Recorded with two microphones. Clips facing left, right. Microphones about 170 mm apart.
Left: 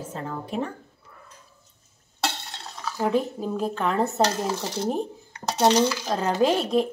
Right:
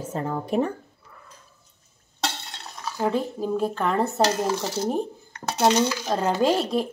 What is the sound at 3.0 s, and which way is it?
Speech, centre (ahead or behind).